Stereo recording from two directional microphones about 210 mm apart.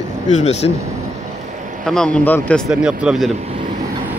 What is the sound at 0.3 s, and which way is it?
Speech, 30° left (ahead or behind).